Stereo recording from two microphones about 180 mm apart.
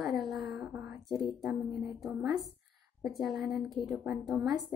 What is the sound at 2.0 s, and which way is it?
A woman's voice, 5° right (ahead or behind).